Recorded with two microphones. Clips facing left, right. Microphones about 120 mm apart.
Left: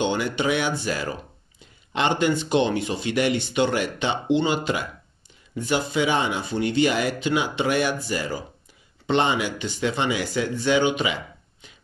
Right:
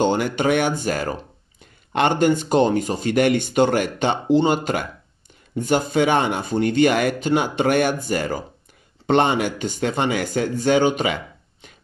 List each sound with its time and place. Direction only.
0.0 s speech: 45° right (ahead or behind)